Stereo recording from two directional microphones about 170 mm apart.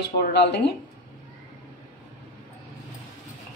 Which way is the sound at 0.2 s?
75° left (ahead or behind).